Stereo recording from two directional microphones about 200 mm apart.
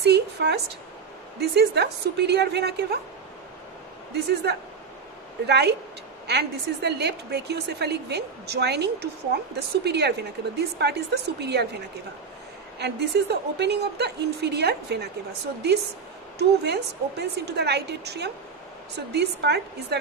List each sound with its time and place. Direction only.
0.0 s a woman's voice: 55° right (ahead or behind)
4.1 s a woman's voice: 55° right (ahead or behind)
12.7 s a woman's voice: 55° right (ahead or behind)
16.3 s a woman's voice: 55° right (ahead or behind)